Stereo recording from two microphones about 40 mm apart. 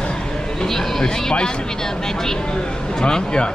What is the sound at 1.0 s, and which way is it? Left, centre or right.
A man's voice, centre.